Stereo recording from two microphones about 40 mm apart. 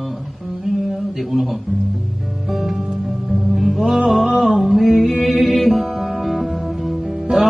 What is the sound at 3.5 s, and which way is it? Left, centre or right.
Music, centre.